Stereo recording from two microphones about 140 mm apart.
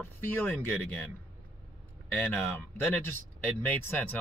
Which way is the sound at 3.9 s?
15° left (ahead or behind).